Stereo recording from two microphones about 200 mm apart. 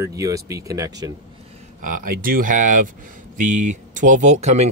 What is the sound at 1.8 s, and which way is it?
Speech, 45° right (ahead or behind).